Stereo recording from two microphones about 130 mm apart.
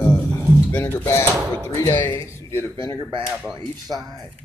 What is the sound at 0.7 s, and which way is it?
Music, 15° left (ahead or behind).